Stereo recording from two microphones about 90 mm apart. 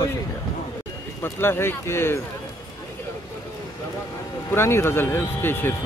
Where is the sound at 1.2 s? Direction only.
25° left (ahead or behind).